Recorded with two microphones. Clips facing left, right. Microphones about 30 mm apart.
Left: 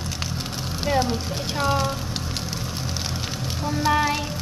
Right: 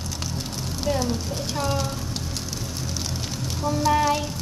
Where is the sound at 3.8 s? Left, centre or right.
Left.